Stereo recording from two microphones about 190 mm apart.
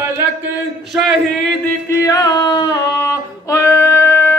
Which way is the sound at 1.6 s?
15° left (ahead or behind).